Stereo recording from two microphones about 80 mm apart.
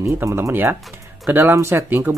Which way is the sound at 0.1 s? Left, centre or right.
Right.